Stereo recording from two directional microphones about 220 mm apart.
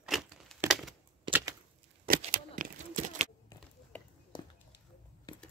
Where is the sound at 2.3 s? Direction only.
35° right (ahead or behind).